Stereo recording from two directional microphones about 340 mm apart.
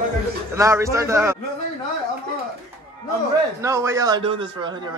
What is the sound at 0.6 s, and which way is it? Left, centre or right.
Speech, centre.